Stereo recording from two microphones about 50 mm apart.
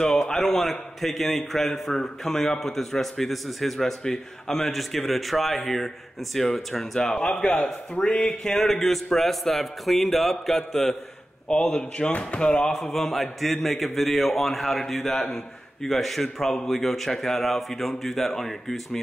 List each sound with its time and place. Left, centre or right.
0.3 s a man's voice: centre
1.9 s mantra: centre
2.6 s a man's voice: centre
7.0 s speech: centre
7.2 s mantra: centre
7.5 s speech: left
8.5 s a man's voice: centre
10.4 s mantra: centre
11.5 s speech: left
12.9 s a man's voice: centre